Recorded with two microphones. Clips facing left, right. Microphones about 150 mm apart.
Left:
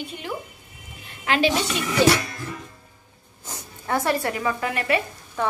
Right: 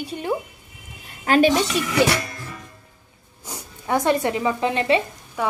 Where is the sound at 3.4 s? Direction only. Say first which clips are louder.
Right 2 dB; 10° right (ahead or behind).